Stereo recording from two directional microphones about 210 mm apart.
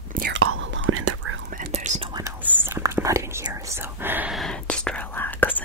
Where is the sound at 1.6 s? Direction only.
35° right (ahead or behind).